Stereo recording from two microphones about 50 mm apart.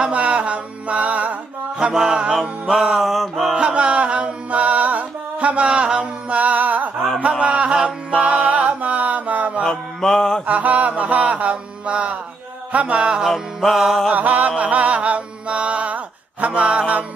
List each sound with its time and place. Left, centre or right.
0.0 s music: right
1.8 s mantra: centre
2.7 s music: centre
3.5 s music: right
7.2 s chant: right
9.7 s mantra: centre
10.4 s mantra: right
13.2 s music: centre
14.1 s chant: right
14.6 s mantra: right